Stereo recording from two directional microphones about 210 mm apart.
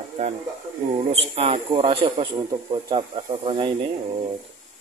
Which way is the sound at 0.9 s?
30° right (ahead or behind).